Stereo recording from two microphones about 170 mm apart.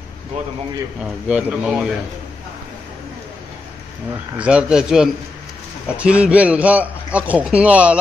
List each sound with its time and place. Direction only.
1.3 s speech: 5° right (ahead or behind)
4.4 s a man's voice: 5° right (ahead or behind)